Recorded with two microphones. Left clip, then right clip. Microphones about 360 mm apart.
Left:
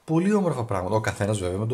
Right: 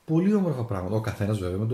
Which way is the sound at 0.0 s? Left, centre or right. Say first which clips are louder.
Left 2 dB; left.